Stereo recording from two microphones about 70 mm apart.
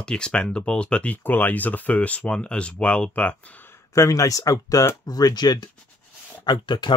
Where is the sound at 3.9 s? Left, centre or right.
Left.